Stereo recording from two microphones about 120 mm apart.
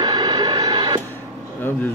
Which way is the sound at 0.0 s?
35° right (ahead or behind).